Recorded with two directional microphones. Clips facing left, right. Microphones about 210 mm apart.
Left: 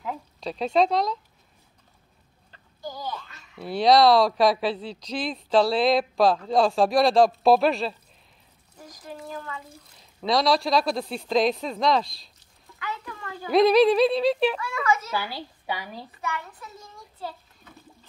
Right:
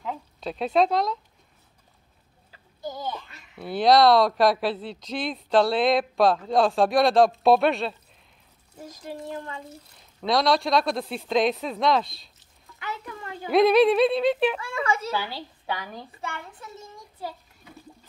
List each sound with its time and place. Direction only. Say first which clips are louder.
0.0 s speech: even; centre (ahead or behind)
2.8 s a sound: right 2 dB; 20° right (ahead or behind)
3.5 s speech: even; centre (ahead or behind)
8.7 s speech: right 4 dB; 25° right (ahead or behind)
9.9 s speech: even; centre (ahead or behind)
12.7 s a sound: even; 20° right (ahead or behind)
13.5 s speech: even; centre (ahead or behind)
14.6 s speech: left 1 dB; 30° right (ahead or behind)
15.1 s speech: even; 5° left (ahead or behind)
16.2 s a child's voice: left 4 dB; 30° right (ahead or behind)
16.9 s a sound: left 1 dB; 10° right (ahead or behind)